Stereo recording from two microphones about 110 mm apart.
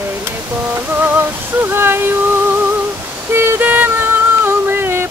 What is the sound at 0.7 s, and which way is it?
Music, 20° right (ahead or behind).